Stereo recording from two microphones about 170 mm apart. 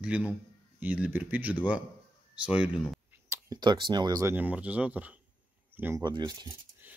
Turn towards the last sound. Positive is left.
turn(degrees=-10)  # may be behind; listen again after turning